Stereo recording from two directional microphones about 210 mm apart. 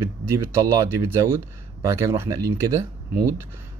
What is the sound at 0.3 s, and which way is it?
Speech, 10° right (ahead or behind).